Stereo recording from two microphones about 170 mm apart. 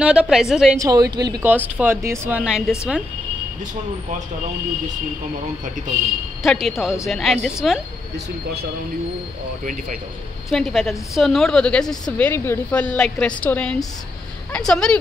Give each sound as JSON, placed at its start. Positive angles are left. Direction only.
{"t": 0.0, "sound": "a woman's voice", "side_deg": -5}
{"t": 0.7, "sound": "a woman's voice", "side_deg": -20}
{"t": 1.8, "sound": "speech", "side_deg": -10}
{"t": 6.4, "sound": "a woman's voice", "side_deg": 0}
{"t": 10.5, "sound": "a woman's voice", "side_deg": 0}